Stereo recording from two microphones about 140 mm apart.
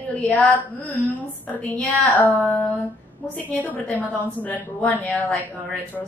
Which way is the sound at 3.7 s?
10° left (ahead or behind).